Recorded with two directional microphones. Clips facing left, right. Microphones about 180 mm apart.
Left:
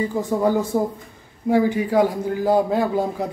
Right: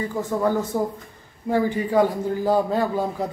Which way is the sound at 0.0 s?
15° left (ahead or behind).